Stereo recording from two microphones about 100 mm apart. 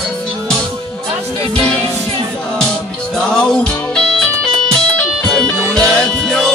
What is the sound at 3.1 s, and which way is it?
Music, 5° left (ahead or behind).